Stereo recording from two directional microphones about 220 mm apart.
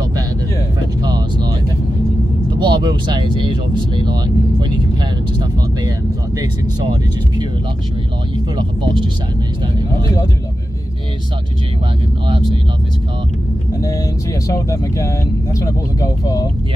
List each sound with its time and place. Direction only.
1.0 s vehicle: 20° right (ahead or behind)
2.6 s speech: 20° right (ahead or behind)
13.7 s speech: 15° left (ahead or behind)